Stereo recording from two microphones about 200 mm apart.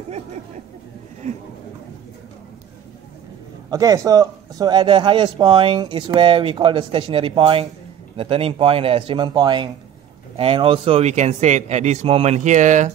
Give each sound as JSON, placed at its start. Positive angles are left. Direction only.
{"t": 3.7, "sound": "speech", "side_deg": -20}